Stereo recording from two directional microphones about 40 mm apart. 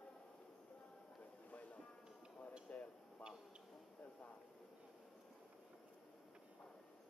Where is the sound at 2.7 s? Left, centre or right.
Left.